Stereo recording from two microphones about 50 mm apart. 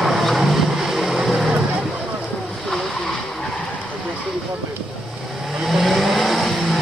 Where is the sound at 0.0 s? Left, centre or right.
Centre.